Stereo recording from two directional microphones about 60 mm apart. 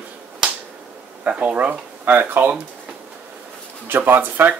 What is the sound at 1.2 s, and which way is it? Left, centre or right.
Speech, right.